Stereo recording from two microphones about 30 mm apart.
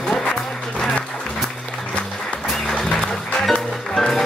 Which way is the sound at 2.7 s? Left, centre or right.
Left.